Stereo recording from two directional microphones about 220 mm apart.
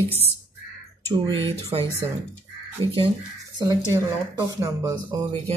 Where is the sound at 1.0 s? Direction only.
20° right (ahead or behind).